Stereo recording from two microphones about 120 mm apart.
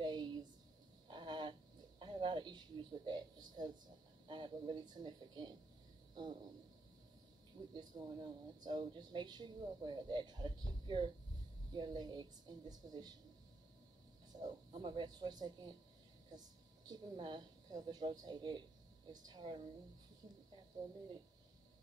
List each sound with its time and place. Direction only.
0.0 s a sound: 40° right (ahead or behind)
4.3 s speech: 40° right (ahead or behind)
7.7 s speech: 35° right (ahead or behind)
14.3 s a woman's voice: 40° right (ahead or behind)